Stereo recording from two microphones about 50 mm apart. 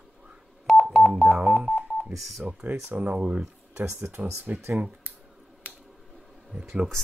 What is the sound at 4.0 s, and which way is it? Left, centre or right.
Speech, right.